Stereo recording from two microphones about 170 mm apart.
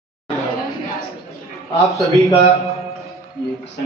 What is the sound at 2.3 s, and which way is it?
Speech, 35° left (ahead or behind).